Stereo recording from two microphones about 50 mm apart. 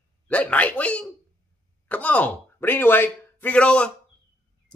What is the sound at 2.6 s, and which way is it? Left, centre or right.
Speech, left.